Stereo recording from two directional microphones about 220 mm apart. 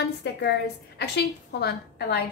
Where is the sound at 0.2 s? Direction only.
50° left (ahead or behind).